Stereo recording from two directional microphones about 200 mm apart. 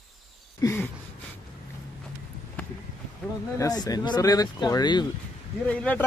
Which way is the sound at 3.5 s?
20° left (ahead or behind).